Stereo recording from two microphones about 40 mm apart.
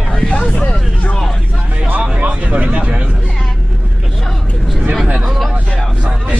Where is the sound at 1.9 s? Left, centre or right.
Right.